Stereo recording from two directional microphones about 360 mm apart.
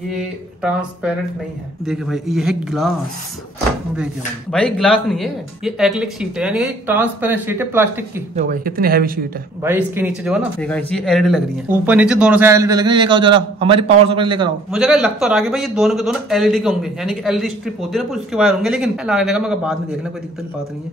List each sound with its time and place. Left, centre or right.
0.6 s speech: centre
3.9 s speech: centre
8.4 s speech: right
9.6 s a man's voice: centre
14.7 s speech: centre